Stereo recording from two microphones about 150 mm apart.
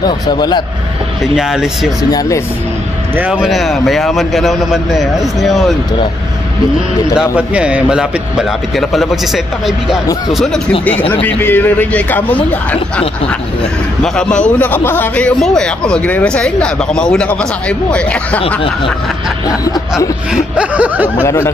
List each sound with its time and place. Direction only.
0.0 s a man's voice: 30° left (ahead or behind)
1.2 s a man's voice: 5° right (ahead or behind)
2.0 s a man's voice: 25° left (ahead or behind)
3.2 s a man's voice: 5° right (ahead or behind)
7.2 s a man's voice: 5° right (ahead or behind); by 12.4 s 10° left (ahead or behind)
14.0 s a man's voice: 5° left (ahead or behind)
20.3 s speech: 10° right (ahead or behind)
21.2 s a man's voice: 15° left (ahead or behind)